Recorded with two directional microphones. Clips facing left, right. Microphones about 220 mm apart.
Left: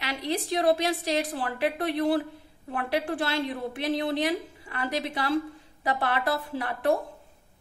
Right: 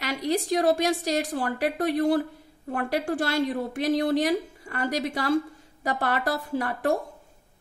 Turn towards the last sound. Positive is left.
turn(degrees=-45)  # may be behind; listen again after turning